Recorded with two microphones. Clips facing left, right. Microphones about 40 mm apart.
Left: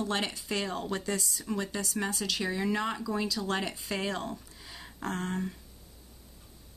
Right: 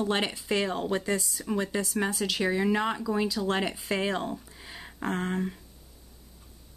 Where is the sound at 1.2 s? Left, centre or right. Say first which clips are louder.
Right 3 dB; centre.